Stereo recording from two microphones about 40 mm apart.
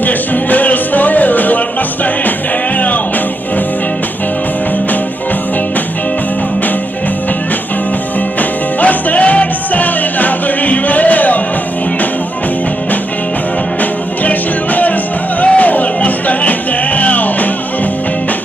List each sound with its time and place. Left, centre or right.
0.0 s music: left
8.4 s music: left
14.2 s music: left